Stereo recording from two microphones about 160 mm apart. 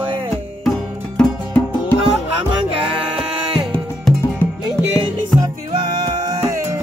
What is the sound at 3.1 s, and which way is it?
Music, 35° right (ahead or behind).